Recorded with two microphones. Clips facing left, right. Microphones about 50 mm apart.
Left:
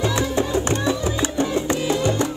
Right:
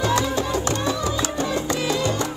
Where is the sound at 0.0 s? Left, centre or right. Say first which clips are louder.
Even; left.